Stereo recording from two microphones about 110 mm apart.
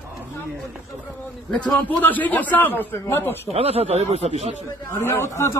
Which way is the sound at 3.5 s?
65° right (ahead or behind).